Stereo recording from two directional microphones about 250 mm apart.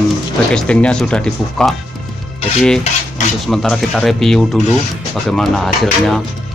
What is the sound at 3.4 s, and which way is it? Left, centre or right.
Speech, centre.